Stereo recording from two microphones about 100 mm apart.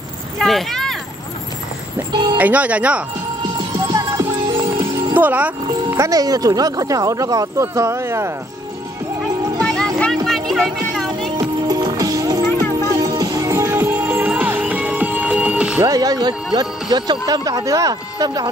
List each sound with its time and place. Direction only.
0.4 s a sound: centre (ahead or behind)
2.3 s speech: 15° right (ahead or behind)
3.8 s music: 35° right (ahead or behind)
5.1 s speech: 15° right (ahead or behind)
5.9 s speech: 35° right (ahead or behind)
9.6 s music: 5° left (ahead or behind)
11.3 s music: 40° right (ahead or behind); by 15.8 s 10° right (ahead or behind)
15.8 s speech: 40° right (ahead or behind)